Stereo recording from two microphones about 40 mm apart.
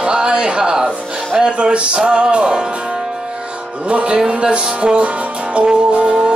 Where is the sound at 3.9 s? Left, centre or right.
Right.